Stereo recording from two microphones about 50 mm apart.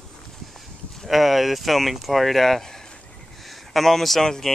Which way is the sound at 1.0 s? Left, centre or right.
Centre.